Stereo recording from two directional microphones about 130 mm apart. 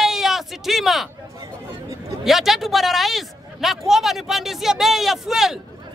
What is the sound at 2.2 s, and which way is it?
Speech, centre (ahead or behind).